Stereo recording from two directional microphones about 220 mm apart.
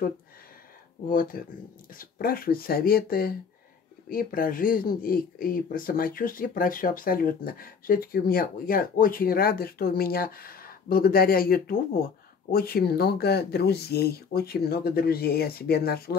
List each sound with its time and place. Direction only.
1.0 s speech: 40° left (ahead or behind)